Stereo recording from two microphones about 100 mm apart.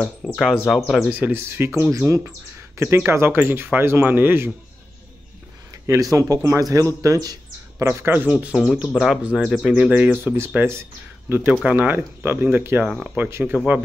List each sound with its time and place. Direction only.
0.4 s speech: centre (ahead or behind)
1.1 s speech: 20° right (ahead or behind)
5.9 s a man's voice: 35° right (ahead or behind)
7.8 s speech: 25° right (ahead or behind)
8.5 s speech: 5° right (ahead or behind); by 13.6 s 20° right (ahead or behind)